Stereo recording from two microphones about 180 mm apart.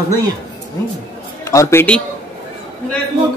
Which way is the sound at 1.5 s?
15° left (ahead or behind).